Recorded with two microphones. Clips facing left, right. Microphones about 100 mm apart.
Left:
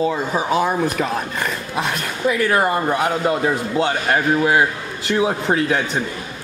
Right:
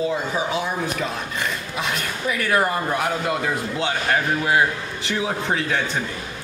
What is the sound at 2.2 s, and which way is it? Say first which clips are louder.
A man's voice: left 4 dB; 25° left (ahead or behind).